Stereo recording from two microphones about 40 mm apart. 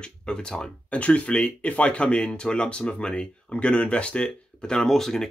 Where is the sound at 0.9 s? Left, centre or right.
Left.